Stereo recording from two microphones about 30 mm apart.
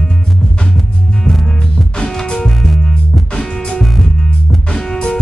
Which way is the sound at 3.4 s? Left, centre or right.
Left.